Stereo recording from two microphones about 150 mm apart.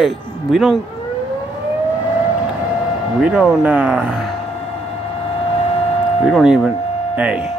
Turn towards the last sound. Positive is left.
turn(degrees=-5)  # may be behind; listen again after turning